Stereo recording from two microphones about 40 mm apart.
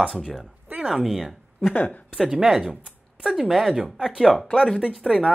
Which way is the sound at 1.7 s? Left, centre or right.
Left.